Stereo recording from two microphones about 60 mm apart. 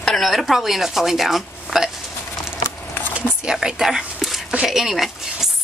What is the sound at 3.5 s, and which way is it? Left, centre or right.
Speech, centre.